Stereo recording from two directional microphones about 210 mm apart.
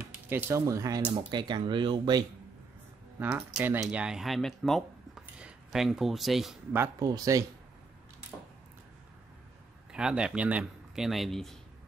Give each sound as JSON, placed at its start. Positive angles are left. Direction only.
{"t": 0.3, "sound": "speech", "side_deg": -10}
{"t": 3.2, "sound": "speech", "side_deg": -10}
{"t": 6.8, "sound": "speech", "side_deg": -15}
{"t": 9.9, "sound": "speech", "side_deg": -5}